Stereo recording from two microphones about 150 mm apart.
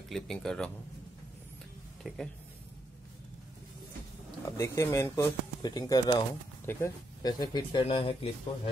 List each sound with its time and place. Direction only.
0.1 s speech: 5° left (ahead or behind)
2.0 s speech: centre (ahead or behind)
4.5 s speech: 20° left (ahead or behind)
6.6 s speech: 15° left (ahead or behind)
7.2 s speech: 30° left (ahead or behind)